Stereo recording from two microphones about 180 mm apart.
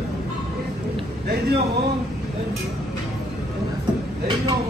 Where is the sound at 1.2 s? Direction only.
65° right (ahead or behind).